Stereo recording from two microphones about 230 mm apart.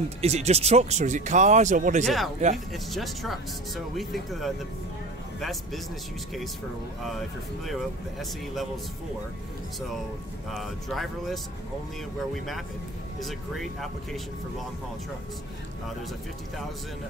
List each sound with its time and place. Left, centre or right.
0.2 s speech: right
2.0 s speech: centre
7.1 s speech: centre
10.5 s speech: centre
13.2 s speech: centre